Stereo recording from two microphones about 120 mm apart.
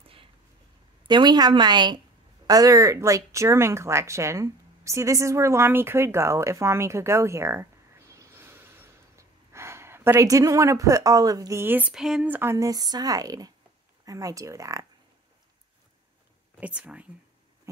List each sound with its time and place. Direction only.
1.0 s speech: 35° right (ahead or behind)
8.1 s gasp: 25° right (ahead or behind)
11.6 s speech: 15° right (ahead or behind)
11.9 s speech: 5° right (ahead or behind)
12.3 s speech: 20° right (ahead or behind)
16.5 s speech: 10° right (ahead or behind)